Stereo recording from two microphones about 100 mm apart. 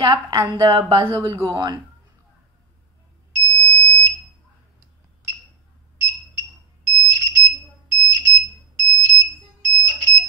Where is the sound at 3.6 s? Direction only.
15° left (ahead or behind).